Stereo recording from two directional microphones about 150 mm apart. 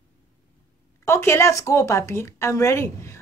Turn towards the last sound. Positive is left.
turn(degrees=20)  # may be behind; listen again after turning